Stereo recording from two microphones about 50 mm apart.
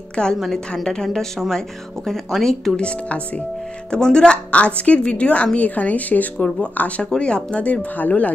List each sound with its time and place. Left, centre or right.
0.1 s speech: centre
0.4 s speech: centre
3.9 s a woman's voice: centre